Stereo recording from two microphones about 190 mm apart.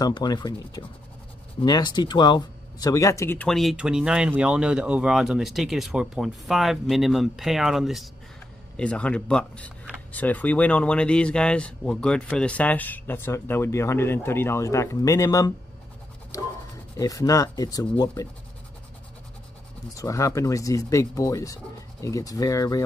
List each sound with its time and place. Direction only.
0.0 s speech: 20° left (ahead or behind)
16.3 s a sound: 20° left (ahead or behind)
16.9 s speech: 20° left (ahead or behind)
20.0 s speech: 15° left (ahead or behind)